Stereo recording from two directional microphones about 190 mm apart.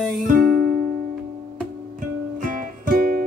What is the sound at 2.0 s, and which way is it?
Music, 45° right (ahead or behind).